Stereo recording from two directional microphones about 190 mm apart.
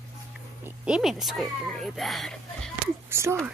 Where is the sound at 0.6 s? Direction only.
5° right (ahead or behind).